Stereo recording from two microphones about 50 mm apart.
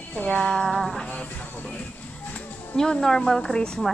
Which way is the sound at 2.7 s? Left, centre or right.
Centre.